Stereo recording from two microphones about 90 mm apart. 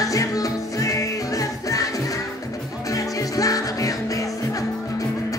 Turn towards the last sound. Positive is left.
turn(degrees=40)  # may be behind; listen again after turning